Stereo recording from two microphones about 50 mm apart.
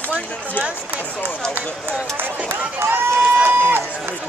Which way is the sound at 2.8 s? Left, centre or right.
Right.